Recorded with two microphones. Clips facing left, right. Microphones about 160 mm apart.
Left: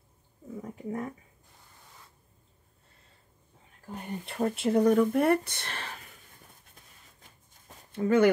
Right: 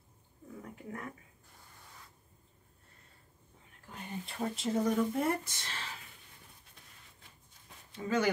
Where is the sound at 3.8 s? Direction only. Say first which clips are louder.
Left 5 dB; 60° left (ahead or behind).